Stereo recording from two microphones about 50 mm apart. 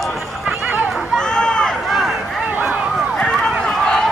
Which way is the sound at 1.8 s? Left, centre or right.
Centre.